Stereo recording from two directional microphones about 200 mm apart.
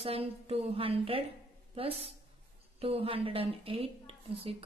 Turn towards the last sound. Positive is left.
turn(degrees=-30)  # may be behind; listen again after turning